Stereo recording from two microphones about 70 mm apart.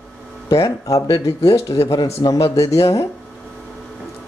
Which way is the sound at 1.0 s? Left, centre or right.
Left.